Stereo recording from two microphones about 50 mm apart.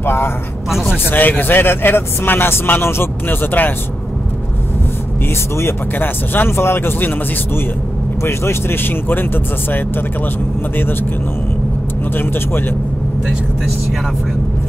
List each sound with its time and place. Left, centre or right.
0.0 s a man's voice: left
5.6 s a man's voice: left
8.2 s a man's voice: left
12.2 s a man's voice: left